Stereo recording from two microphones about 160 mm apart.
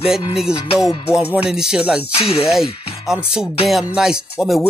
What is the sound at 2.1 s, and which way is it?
Music, 40° left (ahead or behind).